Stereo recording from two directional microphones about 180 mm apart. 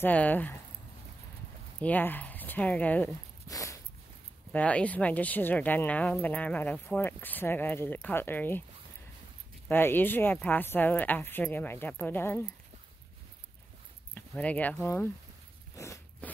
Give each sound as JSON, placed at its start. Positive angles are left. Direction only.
{"t": 0.0, "sound": "speech", "side_deg": 10}
{"t": 1.8, "sound": "speech", "side_deg": 10}
{"t": 4.5, "sound": "speech", "side_deg": 5}
{"t": 9.7, "sound": "speech", "side_deg": 10}
{"t": 14.1, "sound": "speech", "side_deg": 10}
{"t": 15.7, "sound": "biting", "side_deg": 15}